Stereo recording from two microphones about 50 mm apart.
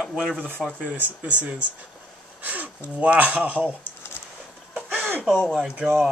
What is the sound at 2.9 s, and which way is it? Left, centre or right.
Speech, right.